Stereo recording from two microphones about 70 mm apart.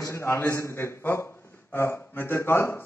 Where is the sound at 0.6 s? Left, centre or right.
Left.